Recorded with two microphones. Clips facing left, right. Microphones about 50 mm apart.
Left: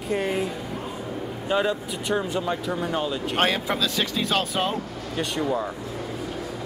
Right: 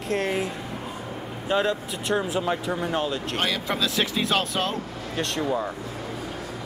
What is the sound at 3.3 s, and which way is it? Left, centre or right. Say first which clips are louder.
Speech: left 6 dB; left.